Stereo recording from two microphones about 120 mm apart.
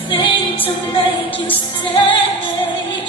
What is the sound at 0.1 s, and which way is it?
Music, 45° left (ahead or behind).